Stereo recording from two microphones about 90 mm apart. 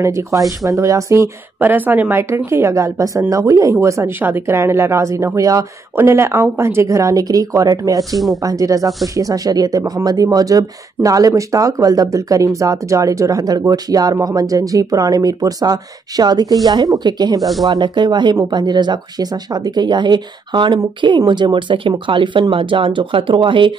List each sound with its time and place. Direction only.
0.0 s speech: 35° right (ahead or behind)
1.6 s speech: 20° right (ahead or behind); by 5.7 s 40° right (ahead or behind)
5.9 s speech: 30° right (ahead or behind); by 17.4 s 50° right (ahead or behind)
17.4 s speech: centre (ahead or behind)
17.6 s speech: 55° right (ahead or behind)